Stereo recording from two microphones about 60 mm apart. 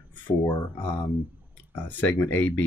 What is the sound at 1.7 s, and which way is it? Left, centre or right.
Speech, left.